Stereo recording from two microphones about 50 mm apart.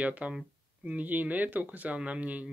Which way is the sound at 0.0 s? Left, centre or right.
Right.